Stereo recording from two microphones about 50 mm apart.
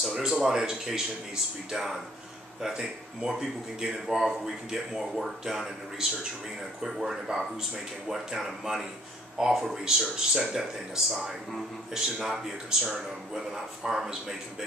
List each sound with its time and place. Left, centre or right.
0.0 s a man's voice: centre